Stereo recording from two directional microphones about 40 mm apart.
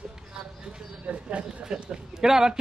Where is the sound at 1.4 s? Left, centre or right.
Centre.